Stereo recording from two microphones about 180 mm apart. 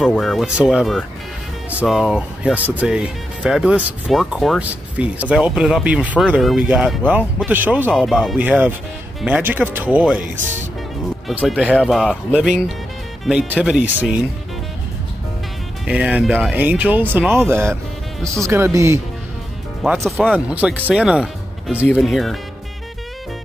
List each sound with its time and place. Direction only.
0.0 s speech: centre (ahead or behind)
11.2 s speech: 5° right (ahead or behind)
15.9 s speech: 5° right (ahead or behind)
19.8 s speech: centre (ahead or behind)